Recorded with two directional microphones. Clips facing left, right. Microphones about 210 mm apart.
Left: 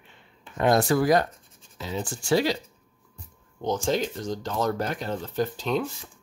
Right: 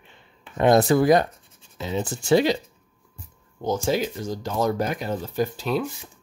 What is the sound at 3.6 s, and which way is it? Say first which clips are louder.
Speech: right 2 dB; 10° right (ahead or behind).